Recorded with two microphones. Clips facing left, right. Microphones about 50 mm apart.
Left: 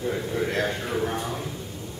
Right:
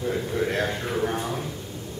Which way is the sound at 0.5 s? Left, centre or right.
Centre.